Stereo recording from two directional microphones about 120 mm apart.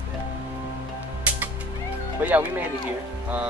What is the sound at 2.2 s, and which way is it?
Speech, 15° right (ahead or behind).